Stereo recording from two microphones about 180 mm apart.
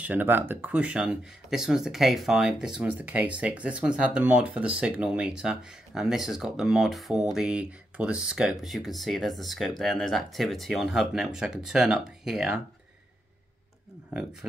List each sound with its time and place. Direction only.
0.0 s speech: 10° right (ahead or behind)